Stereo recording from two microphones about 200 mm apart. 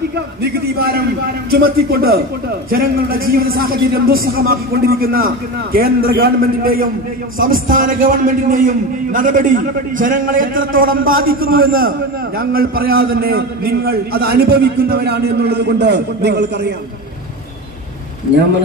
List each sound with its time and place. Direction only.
0.4 s a man's voice: 50° right (ahead or behind)